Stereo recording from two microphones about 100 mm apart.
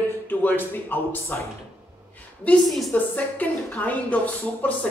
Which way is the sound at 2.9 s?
15° left (ahead or behind).